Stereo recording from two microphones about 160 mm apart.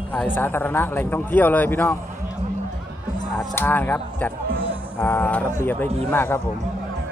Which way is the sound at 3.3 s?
15° left (ahead or behind).